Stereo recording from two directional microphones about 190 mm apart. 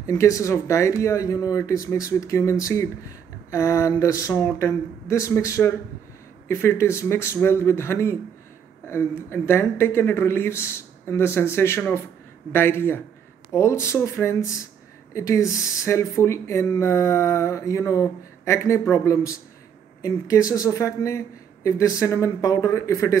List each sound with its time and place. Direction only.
0.0 s speech: 15° left (ahead or behind)